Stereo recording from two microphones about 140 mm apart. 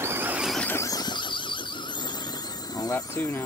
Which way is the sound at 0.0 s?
15° right (ahead or behind).